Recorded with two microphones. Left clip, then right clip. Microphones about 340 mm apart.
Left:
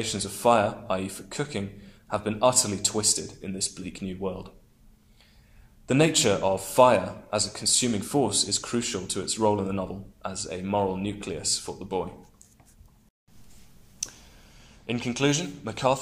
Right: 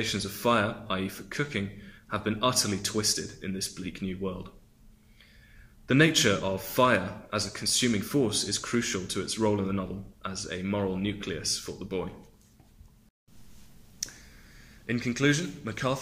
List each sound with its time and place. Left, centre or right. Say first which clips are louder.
0.0 s speech: left 4 dB; centre
5.9 s speech: left 1 dB; centre
14.0 s a sound: left 2 dB; centre
15.1 s speech: left 1 dB; centre